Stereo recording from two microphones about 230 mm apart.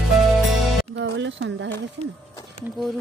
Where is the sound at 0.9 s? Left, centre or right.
Right.